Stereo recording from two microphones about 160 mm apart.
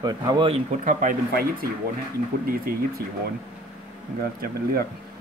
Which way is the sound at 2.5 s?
65° right (ahead or behind).